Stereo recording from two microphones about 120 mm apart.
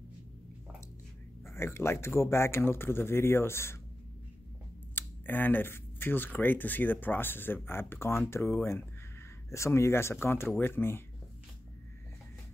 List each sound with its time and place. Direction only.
1.4 s speech: 20° left (ahead or behind)
4.9 s speech: 15° left (ahead or behind)